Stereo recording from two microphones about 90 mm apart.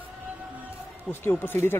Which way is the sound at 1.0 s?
25° left (ahead or behind).